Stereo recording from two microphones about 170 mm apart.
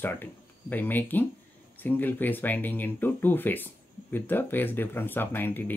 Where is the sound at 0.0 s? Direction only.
10° left (ahead or behind).